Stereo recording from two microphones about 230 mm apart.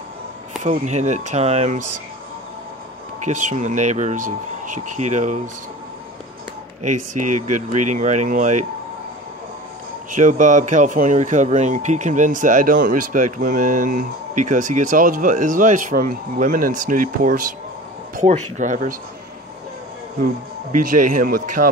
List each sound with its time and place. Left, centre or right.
0.7 s speech: right
3.3 s speech: right
7.2 s speech: right
7.9 s speech: right
10.1 s speech: right
20.8 s speech: right